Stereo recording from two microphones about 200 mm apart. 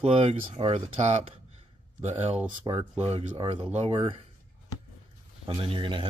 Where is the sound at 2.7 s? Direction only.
20° right (ahead or behind).